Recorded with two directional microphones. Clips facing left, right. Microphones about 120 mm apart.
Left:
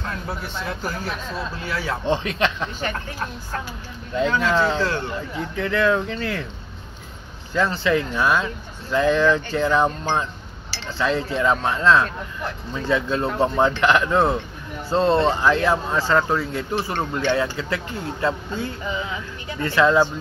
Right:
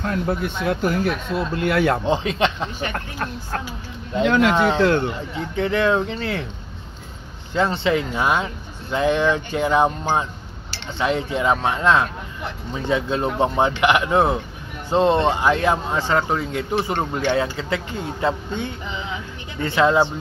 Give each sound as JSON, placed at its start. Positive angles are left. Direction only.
{"t": 0.3, "sound": "speech", "side_deg": -55}
{"t": 2.0, "sound": "speech", "side_deg": -25}
{"t": 4.2, "sound": "speech", "side_deg": -70}
{"t": 4.7, "sound": "speech", "side_deg": -60}
{"t": 5.3, "sound": "speech", "side_deg": -25}
{"t": 7.5, "sound": "speech", "side_deg": -25}
{"t": 19.6, "sound": "speech", "side_deg": -25}